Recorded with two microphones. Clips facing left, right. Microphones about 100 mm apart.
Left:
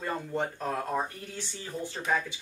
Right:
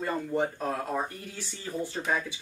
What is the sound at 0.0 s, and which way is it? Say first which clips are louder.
Speech: right 3 dB; 10° right (ahead or behind).